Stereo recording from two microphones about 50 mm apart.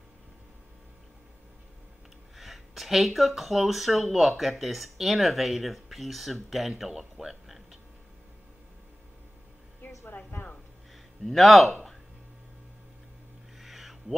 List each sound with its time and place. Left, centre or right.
2.3 s speech: centre
6.8 s music: centre
10.0 s a sound: left
11.2 s speech: centre
13.6 s owl: centre